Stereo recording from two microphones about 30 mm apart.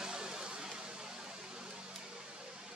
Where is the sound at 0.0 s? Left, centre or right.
Right.